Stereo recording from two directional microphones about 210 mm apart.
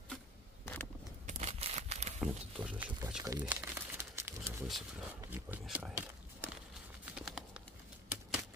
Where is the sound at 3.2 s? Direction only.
15° right (ahead or behind).